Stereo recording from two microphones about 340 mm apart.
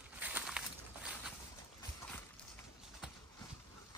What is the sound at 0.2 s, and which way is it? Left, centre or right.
Walk, centre.